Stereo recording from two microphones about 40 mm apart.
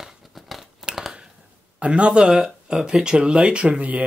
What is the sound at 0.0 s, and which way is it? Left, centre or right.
Crumpling, centre.